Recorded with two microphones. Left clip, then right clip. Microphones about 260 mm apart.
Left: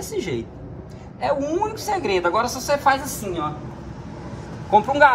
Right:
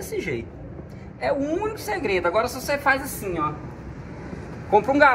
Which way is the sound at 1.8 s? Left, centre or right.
Left.